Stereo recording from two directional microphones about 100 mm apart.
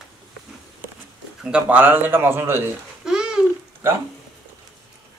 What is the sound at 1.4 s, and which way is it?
Speech, 10° right (ahead or behind).